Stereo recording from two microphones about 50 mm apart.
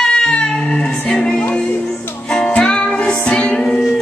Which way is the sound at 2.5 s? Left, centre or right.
Centre.